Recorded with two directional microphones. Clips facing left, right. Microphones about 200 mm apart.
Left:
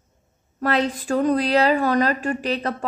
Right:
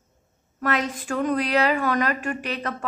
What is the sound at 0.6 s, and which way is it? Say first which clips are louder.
A woman's voice: left 4 dB; 30° left (ahead or behind).